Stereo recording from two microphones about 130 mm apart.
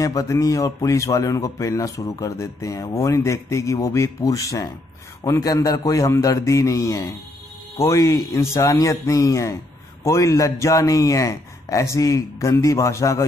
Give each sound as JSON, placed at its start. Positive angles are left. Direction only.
{"t": 0.0, "sound": "speech", "side_deg": 25}